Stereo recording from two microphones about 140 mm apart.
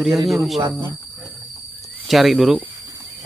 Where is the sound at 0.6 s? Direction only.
20° right (ahead or behind).